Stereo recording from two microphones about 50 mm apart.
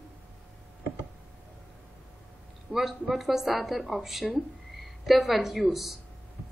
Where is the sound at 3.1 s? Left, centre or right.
Centre.